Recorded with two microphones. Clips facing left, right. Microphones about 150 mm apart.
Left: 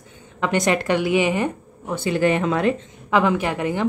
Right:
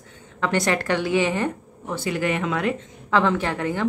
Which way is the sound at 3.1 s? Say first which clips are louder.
Left 2 dB; 15° left (ahead or behind).